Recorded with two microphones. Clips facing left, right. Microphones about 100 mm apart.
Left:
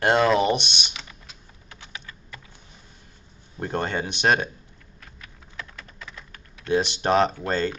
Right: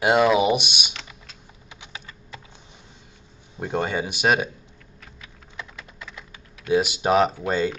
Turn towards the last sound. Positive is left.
turn(degrees=-10)  # may be behind; listen again after turning